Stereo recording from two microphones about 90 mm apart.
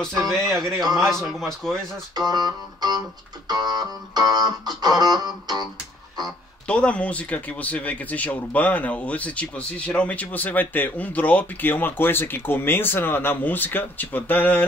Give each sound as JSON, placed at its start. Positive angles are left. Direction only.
{"t": 0.0, "sound": "speech", "side_deg": 0}
{"t": 2.1, "sound": "music", "side_deg": -50}
{"t": 6.7, "sound": "speech", "side_deg": 15}